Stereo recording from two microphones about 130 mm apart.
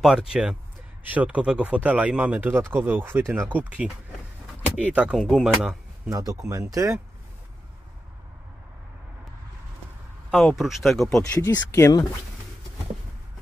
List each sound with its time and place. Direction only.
0.0 s speech: 5° right (ahead or behind)
6.0 s speech: 25° right (ahead or behind)
10.3 s speech: centre (ahead or behind)
11.4 s speech: 20° left (ahead or behind)